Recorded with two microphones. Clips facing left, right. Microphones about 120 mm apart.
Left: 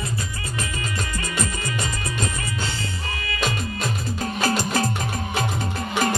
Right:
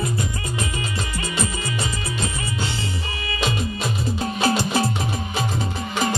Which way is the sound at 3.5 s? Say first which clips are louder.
Right 3 dB; 15° right (ahead or behind).